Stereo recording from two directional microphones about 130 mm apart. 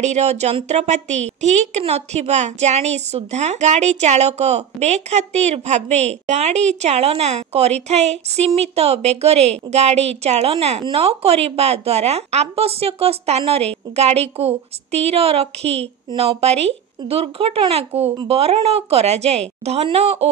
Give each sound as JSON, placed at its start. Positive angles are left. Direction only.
{"t": 0.0, "sound": "a woman's voice", "side_deg": -60}